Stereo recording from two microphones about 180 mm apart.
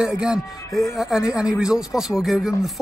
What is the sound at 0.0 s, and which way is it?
Speech, 5° right (ahead or behind).